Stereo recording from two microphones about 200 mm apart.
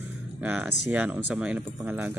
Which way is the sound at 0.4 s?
10° right (ahead or behind).